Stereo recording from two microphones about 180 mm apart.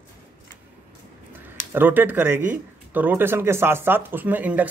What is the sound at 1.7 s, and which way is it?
Speech, 10° right (ahead or behind).